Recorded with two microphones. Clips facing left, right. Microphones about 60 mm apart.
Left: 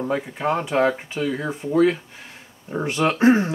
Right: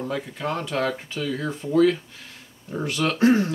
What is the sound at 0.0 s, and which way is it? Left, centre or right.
Speech, left.